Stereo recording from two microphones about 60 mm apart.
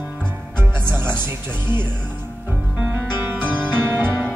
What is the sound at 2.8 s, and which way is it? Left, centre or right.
Music, right.